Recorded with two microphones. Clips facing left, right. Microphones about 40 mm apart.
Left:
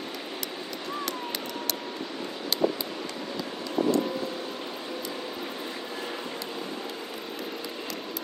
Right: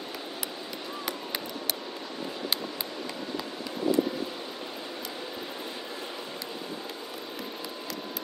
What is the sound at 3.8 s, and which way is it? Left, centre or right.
Vehicle, left.